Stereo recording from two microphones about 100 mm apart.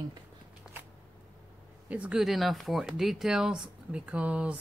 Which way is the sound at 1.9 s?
15° right (ahead or behind).